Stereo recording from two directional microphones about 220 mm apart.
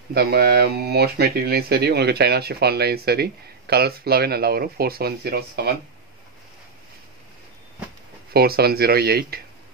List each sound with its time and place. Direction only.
0.1 s speech: 45° right (ahead or behind)
8.3 s speech: 45° right (ahead or behind)